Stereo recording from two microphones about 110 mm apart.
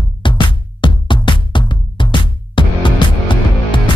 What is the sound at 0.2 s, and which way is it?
Music, 50° left (ahead or behind).